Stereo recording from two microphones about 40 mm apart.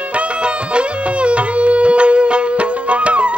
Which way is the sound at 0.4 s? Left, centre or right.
Right.